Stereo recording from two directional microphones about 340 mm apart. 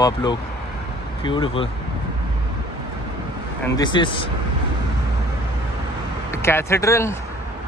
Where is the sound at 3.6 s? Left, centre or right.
Centre.